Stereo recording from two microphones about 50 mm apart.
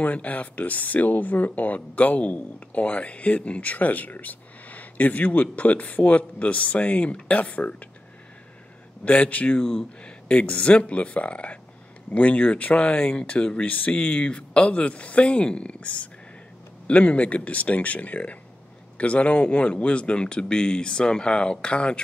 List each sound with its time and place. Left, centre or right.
0.0 s speech: left
9.0 s speech: left
9.6 s speech: centre